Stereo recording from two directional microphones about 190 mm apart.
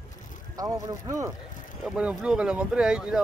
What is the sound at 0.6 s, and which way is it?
Speech, 20° right (ahead or behind).